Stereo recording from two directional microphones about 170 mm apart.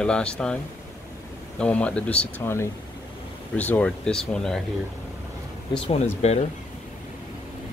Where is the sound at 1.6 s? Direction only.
5° left (ahead or behind).